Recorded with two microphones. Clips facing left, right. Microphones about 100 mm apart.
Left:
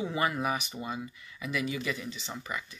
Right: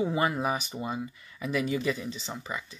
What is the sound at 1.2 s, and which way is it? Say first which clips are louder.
Speech: right 5 dB; 40° right (ahead or behind).